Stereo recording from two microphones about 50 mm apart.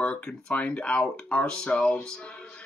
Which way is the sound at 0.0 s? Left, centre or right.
Left.